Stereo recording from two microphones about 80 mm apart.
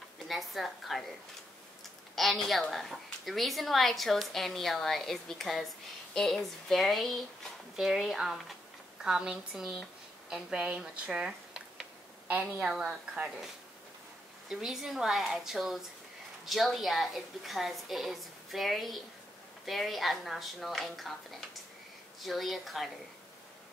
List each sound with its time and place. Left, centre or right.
0.3 s a woman's voice: centre
2.4 s a woman's voice: centre
14.5 s a woman's voice: centre